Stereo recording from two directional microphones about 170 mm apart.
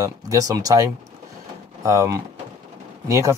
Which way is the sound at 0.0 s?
20° right (ahead or behind).